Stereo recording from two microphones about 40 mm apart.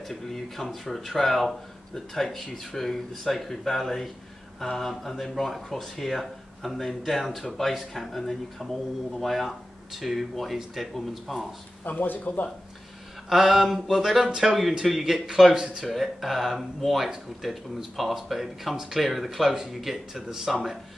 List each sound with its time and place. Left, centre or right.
0.1 s speech: centre
11.8 s speech: left
13.3 s speech: centre